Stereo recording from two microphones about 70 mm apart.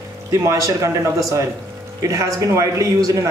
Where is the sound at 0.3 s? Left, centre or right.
Right.